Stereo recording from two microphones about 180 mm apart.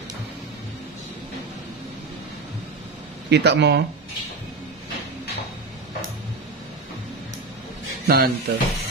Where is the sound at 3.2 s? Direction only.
70° right (ahead or behind).